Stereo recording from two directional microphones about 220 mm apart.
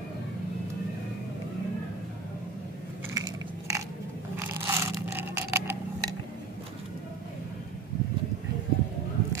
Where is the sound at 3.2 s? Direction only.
15° right (ahead or behind).